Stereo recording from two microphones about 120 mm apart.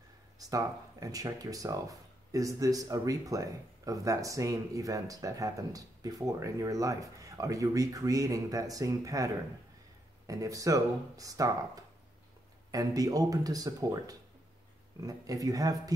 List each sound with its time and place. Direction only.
0.4 s speech: 30° right (ahead or behind)